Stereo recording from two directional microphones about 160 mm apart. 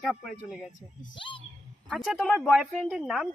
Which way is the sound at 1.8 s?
Centre (ahead or behind).